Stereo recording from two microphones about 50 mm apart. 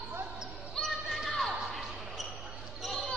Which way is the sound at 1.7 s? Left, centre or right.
Centre.